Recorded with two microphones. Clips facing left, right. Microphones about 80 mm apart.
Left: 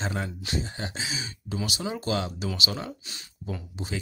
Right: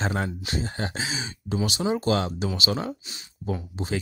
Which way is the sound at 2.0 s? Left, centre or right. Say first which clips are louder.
Right 4 dB; right.